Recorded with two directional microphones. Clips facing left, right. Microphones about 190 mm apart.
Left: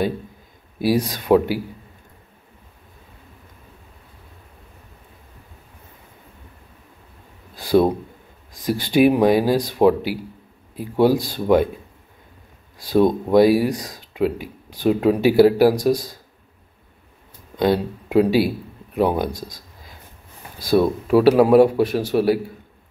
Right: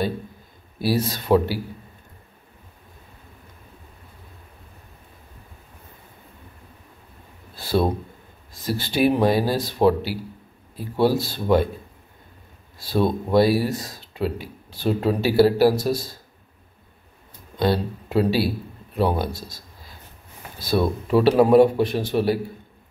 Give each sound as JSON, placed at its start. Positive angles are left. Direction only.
{"t": 0.7, "sound": "speech", "side_deg": 15}
{"t": 7.5, "sound": "a sound", "side_deg": 15}
{"t": 8.5, "sound": "speech", "side_deg": 15}
{"t": 12.9, "sound": "speech", "side_deg": 15}
{"t": 17.6, "sound": "speech", "side_deg": 15}